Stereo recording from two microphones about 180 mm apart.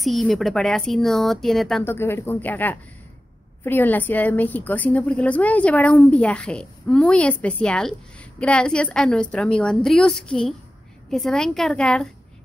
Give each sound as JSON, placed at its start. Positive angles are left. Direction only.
{"t": 0.0, "sound": "speech", "side_deg": 0}
{"t": 1.9, "sound": "a woman's voice", "side_deg": 15}